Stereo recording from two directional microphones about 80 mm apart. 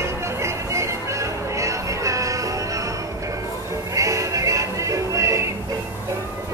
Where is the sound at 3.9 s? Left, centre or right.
Right.